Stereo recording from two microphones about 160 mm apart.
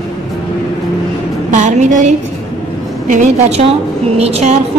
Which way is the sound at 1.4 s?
50° right (ahead or behind).